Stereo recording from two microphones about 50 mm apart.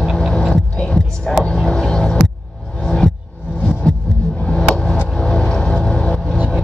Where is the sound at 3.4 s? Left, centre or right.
Centre.